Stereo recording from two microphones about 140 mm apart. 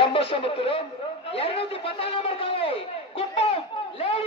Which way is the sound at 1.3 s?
45° left (ahead or behind).